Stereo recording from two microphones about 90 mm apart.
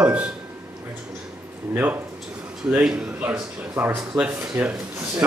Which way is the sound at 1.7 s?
20° right (ahead or behind).